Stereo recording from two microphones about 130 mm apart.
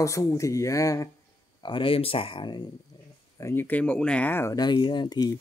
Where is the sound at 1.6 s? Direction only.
40° left (ahead or behind).